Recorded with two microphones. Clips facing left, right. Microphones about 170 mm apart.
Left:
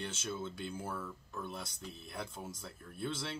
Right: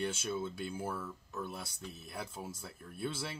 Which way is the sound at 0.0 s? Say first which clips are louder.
Right 4 dB; 10° right (ahead or behind).